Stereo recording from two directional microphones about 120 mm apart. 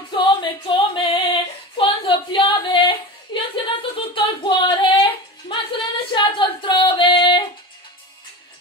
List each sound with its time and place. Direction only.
0.1 s singing: 45° left (ahead or behind)
1.8 s a sound: 45° left (ahead or behind)
5.5 s singing: 45° left (ahead or behind)